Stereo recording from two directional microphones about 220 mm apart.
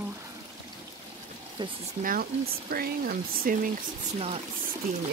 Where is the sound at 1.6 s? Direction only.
20° right (ahead or behind).